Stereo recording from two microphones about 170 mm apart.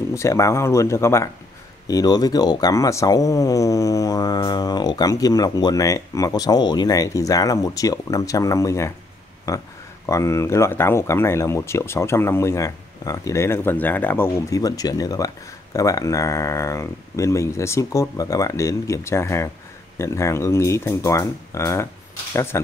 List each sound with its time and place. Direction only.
0.1 s speech: 15° left (ahead or behind)